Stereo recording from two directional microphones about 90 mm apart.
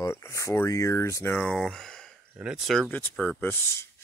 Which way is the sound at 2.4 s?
10° right (ahead or behind).